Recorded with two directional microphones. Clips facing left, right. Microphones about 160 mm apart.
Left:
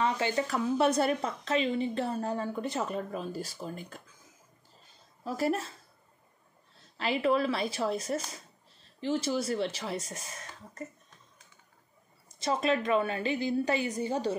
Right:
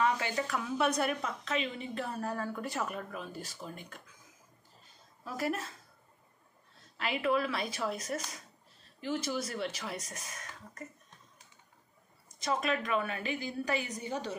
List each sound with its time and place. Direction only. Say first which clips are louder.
0.0 s a woman's voice: left 2 dB; 30° left (ahead or behind)
5.2 s a woman's voice: left 5 dB; 30° left (ahead or behind)
7.0 s a woman's voice: left 4 dB; 30° left (ahead or behind)
12.4 s a woman's voice: left 4 dB; 30° left (ahead or behind)